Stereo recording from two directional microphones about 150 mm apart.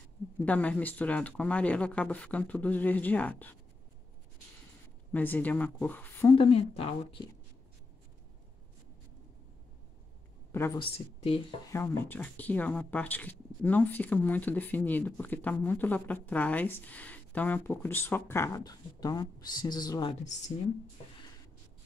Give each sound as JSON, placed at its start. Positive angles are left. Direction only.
{"t": 0.4, "sound": "speech", "side_deg": 10}
{"t": 5.1, "sound": "speech", "side_deg": 10}
{"t": 6.3, "sound": "speech", "side_deg": 35}
{"t": 10.5, "sound": "a sound", "side_deg": 15}
{"t": 10.8, "sound": "speech", "side_deg": 40}
{"t": 11.6, "sound": "speech", "side_deg": 15}